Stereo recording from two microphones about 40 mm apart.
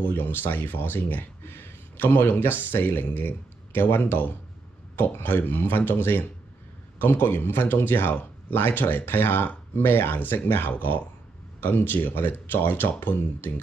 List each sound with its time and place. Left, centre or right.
0.0 s speech: left
10.7 s speech: left